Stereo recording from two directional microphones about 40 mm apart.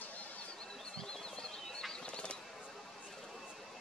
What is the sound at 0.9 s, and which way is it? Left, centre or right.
Bird flight, centre.